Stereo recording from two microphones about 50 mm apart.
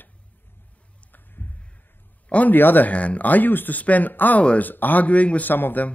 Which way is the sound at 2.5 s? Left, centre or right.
Left.